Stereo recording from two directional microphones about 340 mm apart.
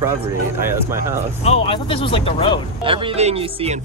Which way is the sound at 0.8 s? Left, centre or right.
Centre.